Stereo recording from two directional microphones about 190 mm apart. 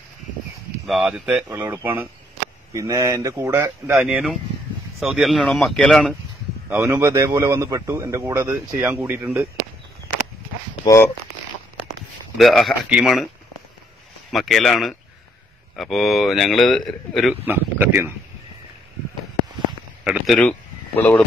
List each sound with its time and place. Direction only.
0.8 s a man's voice: 5° right (ahead or behind)
4.0 s speech: centre (ahead or behind)
6.7 s a man's voice: 10° right (ahead or behind)
12.4 s speech: centre (ahead or behind)
14.3 s speech: centre (ahead or behind)
17.5 s a man's voice: 10° right (ahead or behind)
20.1 s speech: centre (ahead or behind)